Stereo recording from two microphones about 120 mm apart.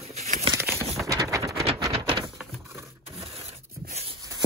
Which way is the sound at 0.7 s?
Centre (ahead or behind).